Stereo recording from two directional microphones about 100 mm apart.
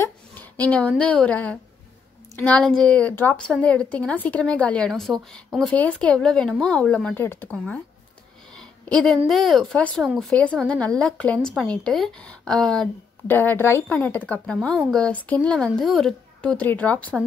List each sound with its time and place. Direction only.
0.0 s a woman's voice: 15° left (ahead or behind)
7.5 s a woman's voice: 10° left (ahead or behind)
8.5 s a sound: 10° left (ahead or behind)
9.3 s a woman's voice: centre (ahead or behind)
10.0 s speech: centre (ahead or behind)
10.3 s a woman's voice: 10° left (ahead or behind)
13.3 s a woman's voice: 20° left (ahead or behind)